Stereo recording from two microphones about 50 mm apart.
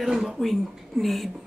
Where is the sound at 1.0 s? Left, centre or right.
Centre.